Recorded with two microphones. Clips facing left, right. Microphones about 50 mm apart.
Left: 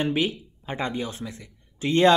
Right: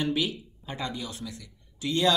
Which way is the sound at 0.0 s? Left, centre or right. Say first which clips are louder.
Left 3 dB; left.